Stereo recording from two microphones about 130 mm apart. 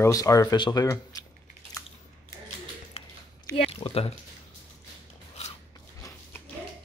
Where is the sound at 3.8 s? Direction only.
50° left (ahead or behind).